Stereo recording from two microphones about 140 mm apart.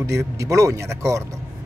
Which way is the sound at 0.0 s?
20° right (ahead or behind).